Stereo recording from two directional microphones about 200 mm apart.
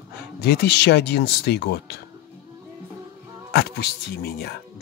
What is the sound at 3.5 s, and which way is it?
Speech, 55° left (ahead or behind).